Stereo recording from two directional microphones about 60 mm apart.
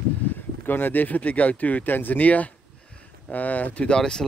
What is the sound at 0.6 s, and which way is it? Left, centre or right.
Speech, left.